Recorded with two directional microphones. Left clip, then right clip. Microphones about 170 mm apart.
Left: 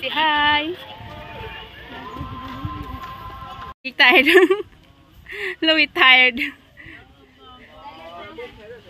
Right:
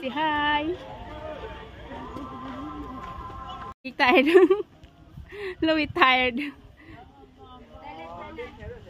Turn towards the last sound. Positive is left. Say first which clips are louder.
# left 9 dB
turn(degrees=-5)  # may be behind; listen again after turning